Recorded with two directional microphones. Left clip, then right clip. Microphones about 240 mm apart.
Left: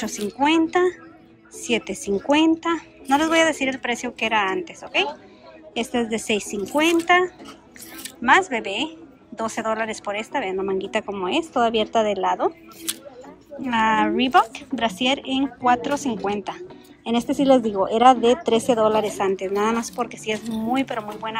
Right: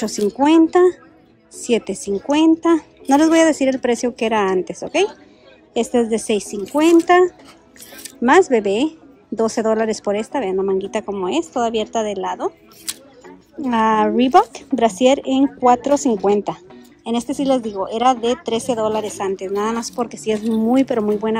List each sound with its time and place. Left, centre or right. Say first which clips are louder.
0.3 s speech: right 5 dB; centre
20.5 s speech: right 8 dB; right